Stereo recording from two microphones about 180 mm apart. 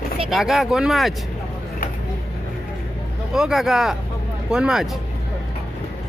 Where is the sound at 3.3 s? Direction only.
Centre (ahead or behind).